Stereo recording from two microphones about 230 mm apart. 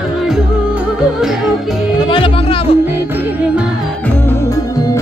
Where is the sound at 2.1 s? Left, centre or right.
Left.